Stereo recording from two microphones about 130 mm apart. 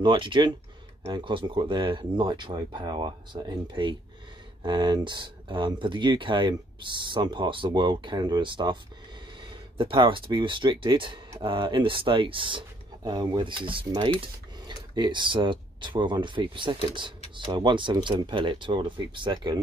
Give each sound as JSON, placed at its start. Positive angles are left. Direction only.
{"t": 0.0, "sound": "speech", "side_deg": -40}